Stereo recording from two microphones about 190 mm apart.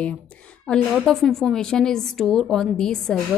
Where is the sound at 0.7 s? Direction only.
5° left (ahead or behind).